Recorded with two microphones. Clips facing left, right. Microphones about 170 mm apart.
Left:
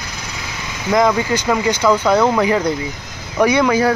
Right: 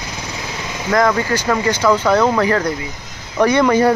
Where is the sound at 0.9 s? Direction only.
15° left (ahead or behind).